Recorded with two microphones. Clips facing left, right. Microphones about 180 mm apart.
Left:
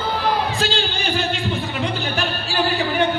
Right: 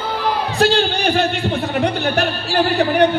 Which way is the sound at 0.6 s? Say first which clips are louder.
Right 7 dB; 60° right (ahead or behind).